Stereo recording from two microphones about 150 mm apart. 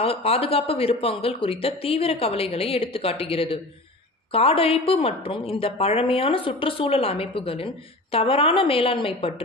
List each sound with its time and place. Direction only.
0.0 s a woman's voice: 40° left (ahead or behind)